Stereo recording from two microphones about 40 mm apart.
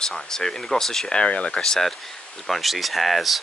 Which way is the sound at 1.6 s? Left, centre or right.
Centre.